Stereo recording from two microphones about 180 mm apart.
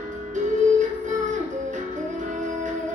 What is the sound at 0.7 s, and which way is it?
Music, 45° right (ahead or behind).